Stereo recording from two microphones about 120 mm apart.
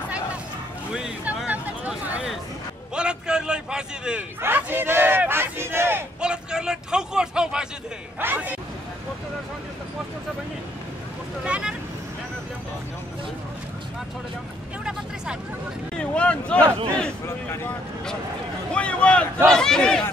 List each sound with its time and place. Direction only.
0.9 s a sound: 10° right (ahead or behind)
4.4 s speech: 15° right (ahead or behind)
6.2 s a man's voice: 5° right (ahead or behind)
11.4 s speech: 10° right (ahead or behind)
16.0 s speech: 10° left (ahead or behind)